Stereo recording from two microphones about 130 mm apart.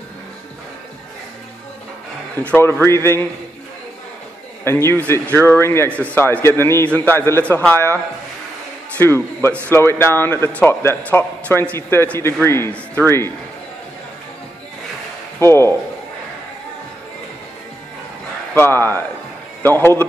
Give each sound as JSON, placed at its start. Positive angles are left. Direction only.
{"t": 2.8, "sound": "speech", "side_deg": 20}
{"t": 4.6, "sound": "a man's voice", "side_deg": 20}
{"t": 15.3, "sound": "speech", "side_deg": 20}
{"t": 18.5, "sound": "a man's voice", "side_deg": 15}